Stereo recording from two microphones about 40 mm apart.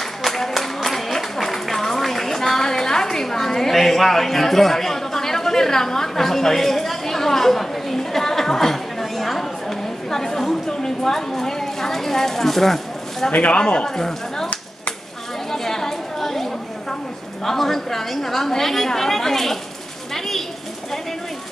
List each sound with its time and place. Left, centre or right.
0.2 s a sound: centre
13.3 s speech: left
13.6 s a man's voice: left
13.8 s speech: centre
15.5 s chatter: centre
17.5 s a woman's voice: centre